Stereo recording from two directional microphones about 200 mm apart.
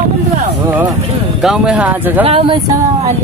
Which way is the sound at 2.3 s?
30° right (ahead or behind).